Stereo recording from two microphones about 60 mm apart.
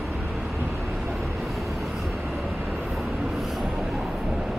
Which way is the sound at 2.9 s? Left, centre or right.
Centre.